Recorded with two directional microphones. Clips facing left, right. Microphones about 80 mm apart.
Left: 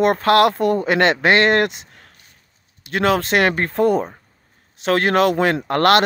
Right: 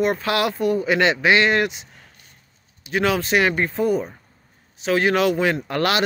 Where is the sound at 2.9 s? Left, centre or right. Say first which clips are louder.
Left 3 dB; left.